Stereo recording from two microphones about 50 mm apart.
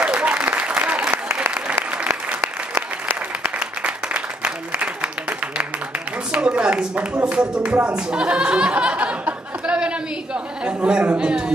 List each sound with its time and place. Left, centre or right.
0.0 s applause: right
6.3 s speech: right
9.8 s a sound: centre
10.9 s a man's voice: centre